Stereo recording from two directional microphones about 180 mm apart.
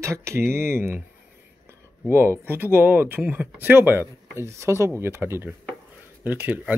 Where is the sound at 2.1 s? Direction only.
15° right (ahead or behind).